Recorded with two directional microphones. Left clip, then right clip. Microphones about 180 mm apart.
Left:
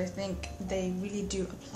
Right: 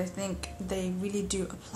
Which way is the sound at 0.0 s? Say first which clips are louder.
Even; 15° right (ahead or behind).